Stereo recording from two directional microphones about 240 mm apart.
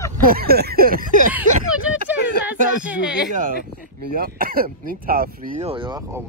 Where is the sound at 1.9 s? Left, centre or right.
Centre.